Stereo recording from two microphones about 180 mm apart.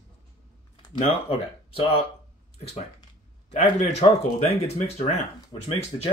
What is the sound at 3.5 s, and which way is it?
Speech, 40° left (ahead or behind).